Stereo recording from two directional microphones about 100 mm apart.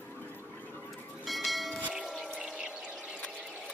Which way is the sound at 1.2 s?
Centre (ahead or behind).